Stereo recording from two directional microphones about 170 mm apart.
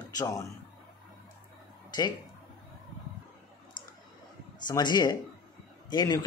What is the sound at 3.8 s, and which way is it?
Clicking, 25° left (ahead or behind).